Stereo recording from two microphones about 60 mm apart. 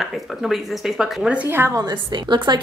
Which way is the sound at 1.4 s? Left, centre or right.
Right.